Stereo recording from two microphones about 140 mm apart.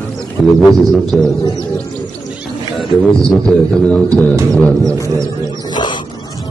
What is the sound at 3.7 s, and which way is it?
A man's voice, 5° left (ahead or behind).